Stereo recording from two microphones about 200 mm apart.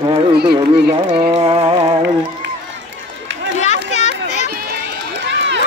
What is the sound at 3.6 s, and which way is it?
Children playing, 35° left (ahead or behind).